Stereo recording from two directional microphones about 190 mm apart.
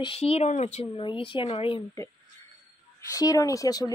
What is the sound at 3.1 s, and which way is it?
Speech, 20° left (ahead or behind).